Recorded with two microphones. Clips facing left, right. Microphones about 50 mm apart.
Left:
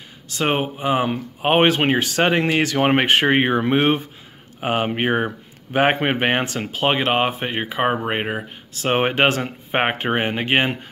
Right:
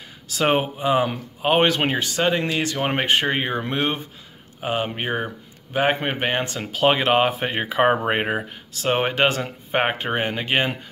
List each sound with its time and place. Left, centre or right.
0.4 s speech: centre
1.0 s speech: left
2.0 s speech: left
2.9 s speech: left
6.7 s speech: centre
8.8 s speech: left